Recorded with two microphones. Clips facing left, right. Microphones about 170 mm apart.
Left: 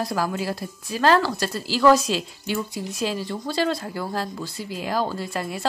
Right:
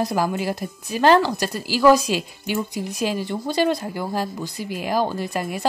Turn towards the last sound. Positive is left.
turn(degrees=-15)  # may be behind; listen again after turning